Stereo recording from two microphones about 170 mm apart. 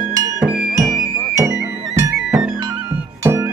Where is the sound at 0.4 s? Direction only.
5° right (ahead or behind).